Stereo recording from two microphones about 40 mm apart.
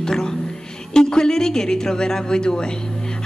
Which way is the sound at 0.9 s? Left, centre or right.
Centre.